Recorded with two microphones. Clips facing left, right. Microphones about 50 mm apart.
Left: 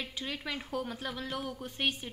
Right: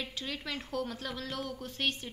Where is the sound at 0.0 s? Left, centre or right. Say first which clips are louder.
Left 1 dB; centre.